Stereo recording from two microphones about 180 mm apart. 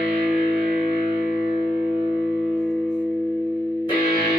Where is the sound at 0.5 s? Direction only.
60° right (ahead or behind).